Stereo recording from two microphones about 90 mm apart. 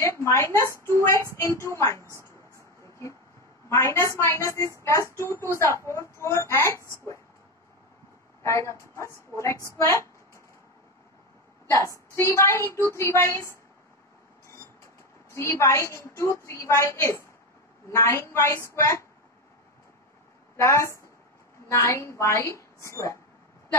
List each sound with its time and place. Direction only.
0.0 s a woman's voice: 35° left (ahead or behind)
2.5 s a sound: 35° left (ahead or behind)
3.6 s a woman's voice: 35° left (ahead or behind)
8.4 s a woman's voice: 35° left (ahead or behind)
9.8 s a sound: 30° left (ahead or behind)
11.7 s a woman's voice: 30° left (ahead or behind)
15.3 s a woman's voice: 35° left (ahead or behind)
20.6 s a woman's voice: 30° left (ahead or behind)